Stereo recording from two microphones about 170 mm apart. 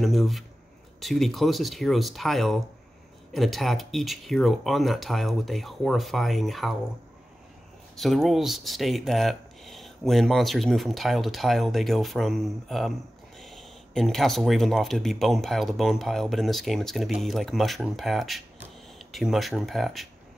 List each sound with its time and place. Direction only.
0.0 s speech: centre (ahead or behind)
7.9 s speech: centre (ahead or behind)